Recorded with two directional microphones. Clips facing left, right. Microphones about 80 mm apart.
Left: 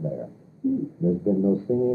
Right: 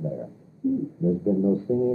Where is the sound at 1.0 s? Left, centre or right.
Left.